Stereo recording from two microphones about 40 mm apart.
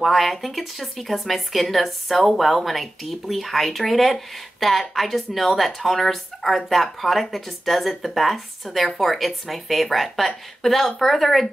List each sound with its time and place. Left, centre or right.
0.0 s speech: centre